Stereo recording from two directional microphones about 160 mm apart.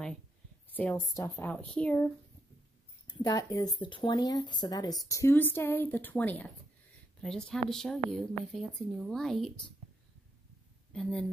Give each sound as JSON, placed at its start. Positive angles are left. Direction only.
{"t": 0.7, "sound": "speech", "side_deg": 10}
{"t": 3.1, "sound": "a woman's voice", "side_deg": 25}
{"t": 10.9, "sound": "a woman's voice", "side_deg": 5}